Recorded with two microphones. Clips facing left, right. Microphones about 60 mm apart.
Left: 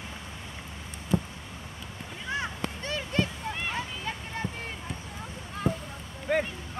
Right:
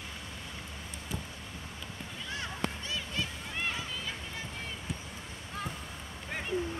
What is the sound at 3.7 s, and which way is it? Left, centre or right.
Vehicle, left.